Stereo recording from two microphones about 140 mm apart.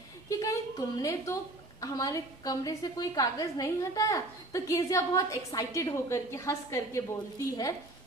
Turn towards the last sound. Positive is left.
turn(degrees=25)  # may be behind; listen again after turning